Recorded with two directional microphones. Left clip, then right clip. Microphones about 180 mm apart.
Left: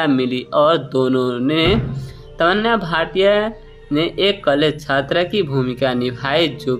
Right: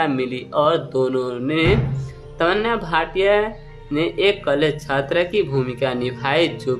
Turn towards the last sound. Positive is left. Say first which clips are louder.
# left 1 dB
turn(degrees=15)  # may be behind; listen again after turning